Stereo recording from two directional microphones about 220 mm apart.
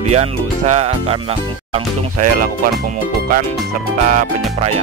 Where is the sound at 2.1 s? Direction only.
40° right (ahead or behind).